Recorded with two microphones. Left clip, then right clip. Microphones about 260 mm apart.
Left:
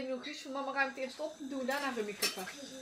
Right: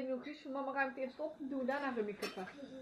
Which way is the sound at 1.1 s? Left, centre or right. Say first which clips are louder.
Left 2 dB; right.